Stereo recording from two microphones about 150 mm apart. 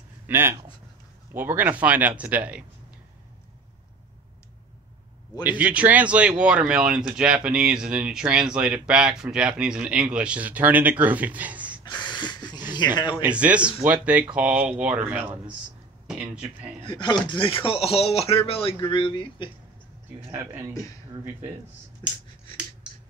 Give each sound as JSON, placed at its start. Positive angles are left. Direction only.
{"t": 0.3, "sound": "speech", "side_deg": -15}
{"t": 5.4, "sound": "speech", "side_deg": -10}
{"t": 11.8, "sound": "a sound", "side_deg": 30}
{"t": 13.1, "sound": "speech", "side_deg": -10}
{"t": 16.8, "sound": "speech", "side_deg": 30}
{"t": 20.2, "sound": "speech", "side_deg": -20}
{"t": 22.8, "sound": "finger snapping", "side_deg": -5}